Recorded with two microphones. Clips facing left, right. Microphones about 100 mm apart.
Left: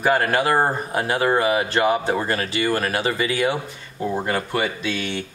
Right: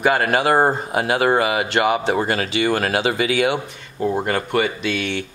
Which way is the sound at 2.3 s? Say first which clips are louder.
Right 2 dB; 90° right.